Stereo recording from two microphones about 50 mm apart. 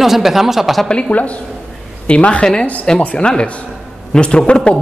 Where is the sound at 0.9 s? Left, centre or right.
Left.